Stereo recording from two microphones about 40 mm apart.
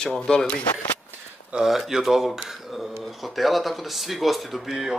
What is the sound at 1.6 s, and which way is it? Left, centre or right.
Speech, centre.